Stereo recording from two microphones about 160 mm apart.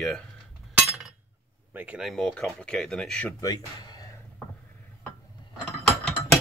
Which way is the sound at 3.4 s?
25° left (ahead or behind).